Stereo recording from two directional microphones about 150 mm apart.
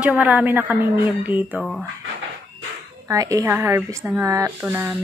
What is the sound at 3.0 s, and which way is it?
A woman's voice, 20° right (ahead or behind).